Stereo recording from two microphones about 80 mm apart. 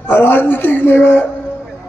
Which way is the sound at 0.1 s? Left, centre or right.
Left.